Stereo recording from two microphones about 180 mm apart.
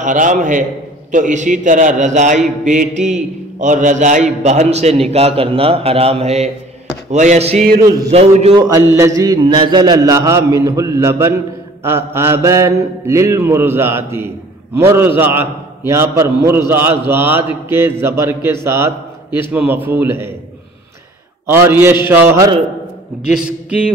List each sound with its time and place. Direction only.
0.0 s a man's voice: 45° right (ahead or behind)
8.9 s a man's voice: 15° right (ahead or behind)
21.5 s a man's voice: 10° right (ahead or behind)